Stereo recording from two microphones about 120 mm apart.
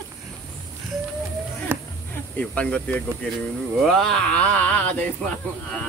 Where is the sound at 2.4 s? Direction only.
10° left (ahead or behind).